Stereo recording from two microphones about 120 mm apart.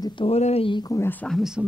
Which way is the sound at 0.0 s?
40° left (ahead or behind).